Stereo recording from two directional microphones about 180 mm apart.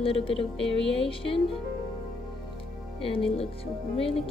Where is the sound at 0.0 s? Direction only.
30° left (ahead or behind).